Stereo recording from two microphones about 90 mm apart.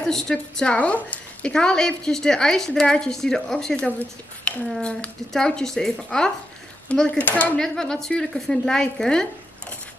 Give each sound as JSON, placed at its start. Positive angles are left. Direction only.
{"t": 0.0, "sound": "a woman's voice", "side_deg": 5}
{"t": 7.5, "sound": "a woman's voice", "side_deg": 5}